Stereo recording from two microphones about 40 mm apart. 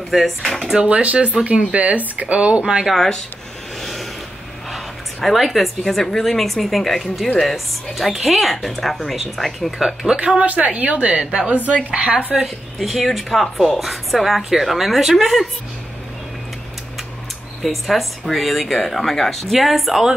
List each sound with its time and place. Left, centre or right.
0.1 s a woman's voice: centre
0.8 s speech: right
2.6 s speech: centre
3.8 s a sound: centre
4.6 s a woman's voice: centre
10.0 s speech: right
11.5 s a woman's voice: right
11.9 s speech: right
12.7 s a woman's voice: centre
17.6 s a woman's voice: centre